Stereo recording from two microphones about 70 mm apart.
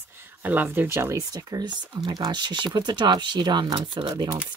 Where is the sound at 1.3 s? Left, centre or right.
Right.